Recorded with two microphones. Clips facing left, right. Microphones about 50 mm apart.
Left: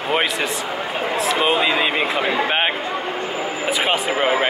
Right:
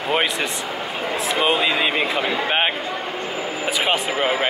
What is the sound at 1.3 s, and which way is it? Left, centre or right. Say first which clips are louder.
Speech: even; centre.